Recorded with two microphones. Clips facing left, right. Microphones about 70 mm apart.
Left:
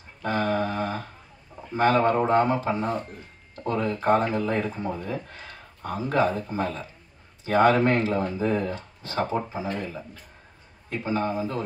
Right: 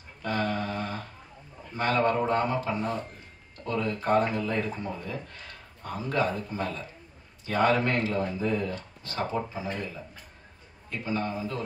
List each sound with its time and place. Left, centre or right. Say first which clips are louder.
0.2 s humming: left 4 dB; left
1.7 s speech: left 5 dB; left
11.1 s speech: left 4 dB; left